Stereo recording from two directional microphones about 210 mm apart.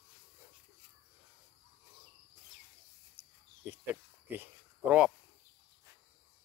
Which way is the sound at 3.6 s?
10° right (ahead or behind).